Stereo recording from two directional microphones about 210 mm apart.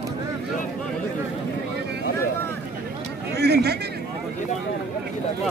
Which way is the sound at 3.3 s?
50° right (ahead or behind).